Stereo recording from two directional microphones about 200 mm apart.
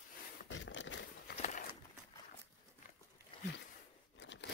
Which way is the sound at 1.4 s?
40° left (ahead or behind).